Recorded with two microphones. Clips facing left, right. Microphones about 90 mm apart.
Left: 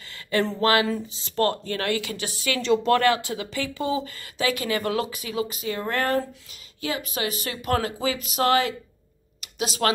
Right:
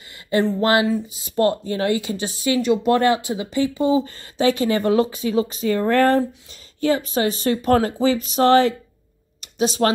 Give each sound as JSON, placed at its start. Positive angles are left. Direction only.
{"t": 0.6, "sound": "speech", "side_deg": -25}